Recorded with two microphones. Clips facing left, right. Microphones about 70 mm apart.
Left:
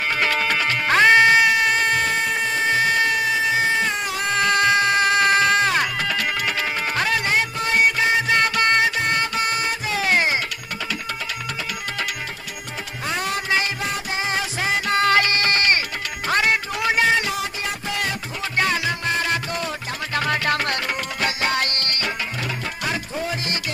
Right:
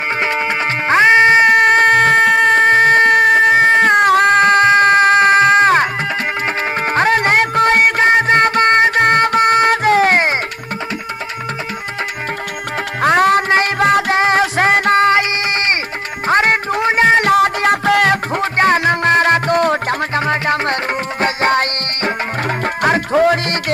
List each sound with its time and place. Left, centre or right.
0.2 s music: right
1.5 s a sound: right
4.4 s music: right
13.0 s music: right
15.0 s music: right
16.3 s music: right
17.2 s music: right
20.2 s music: right
22.8 s music: right
23.1 s music: right